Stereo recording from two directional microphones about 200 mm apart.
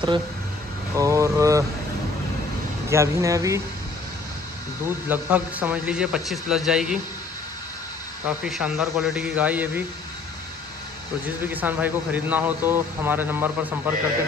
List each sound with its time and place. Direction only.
0.9 s speech: 15° right (ahead or behind)
2.9 s speech: 15° right (ahead or behind)
5.1 s a man's voice: 10° right (ahead or behind)
8.5 s a man's voice: centre (ahead or behind)
11.5 s speech: 10° right (ahead or behind)